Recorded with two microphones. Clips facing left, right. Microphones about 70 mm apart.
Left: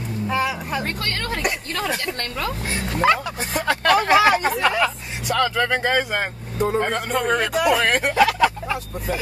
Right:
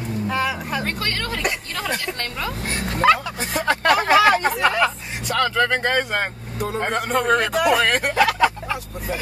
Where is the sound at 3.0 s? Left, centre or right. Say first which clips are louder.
Right 2 dB; centre.